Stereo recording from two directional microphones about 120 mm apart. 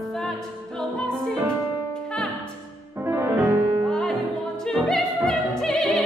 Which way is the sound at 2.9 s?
20° right (ahead or behind).